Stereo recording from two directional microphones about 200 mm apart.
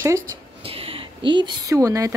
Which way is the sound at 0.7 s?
30° right (ahead or behind).